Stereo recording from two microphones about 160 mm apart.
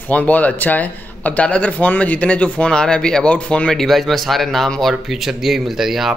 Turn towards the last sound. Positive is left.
turn(degrees=0)  # may be behind; listen again after turning